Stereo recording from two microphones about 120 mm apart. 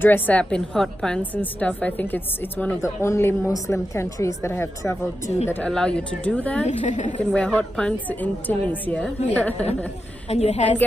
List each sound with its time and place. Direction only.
0.0 s a woman's voice: 15° left (ahead or behind)
5.5 s a woman's voice: 10° left (ahead or behind)
6.6 s a woman's voice: 65° left (ahead or behind)
7.3 s a woman's voice: 10° left (ahead or behind)
10.2 s a woman's voice: 60° left (ahead or behind)